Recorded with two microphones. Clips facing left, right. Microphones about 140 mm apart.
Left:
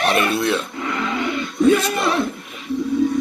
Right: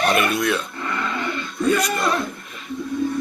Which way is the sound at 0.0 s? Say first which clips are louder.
Left 1 dB; 30° left (ahead or behind).